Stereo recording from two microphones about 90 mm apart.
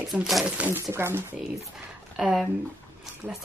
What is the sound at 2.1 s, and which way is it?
Speech, 5° right (ahead or behind).